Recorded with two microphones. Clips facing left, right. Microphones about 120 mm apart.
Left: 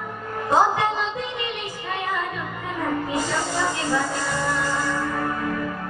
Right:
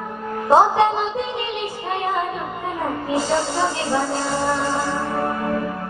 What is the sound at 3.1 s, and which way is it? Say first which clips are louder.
Music: right 4 dB; 25° right (ahead or behind).